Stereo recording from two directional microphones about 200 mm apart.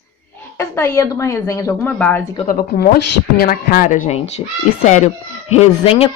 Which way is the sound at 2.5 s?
50° left (ahead or behind).